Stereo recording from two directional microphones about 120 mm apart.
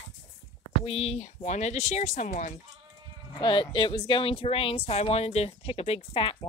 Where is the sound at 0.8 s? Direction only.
55° left (ahead or behind); by 2.5 s 85° left.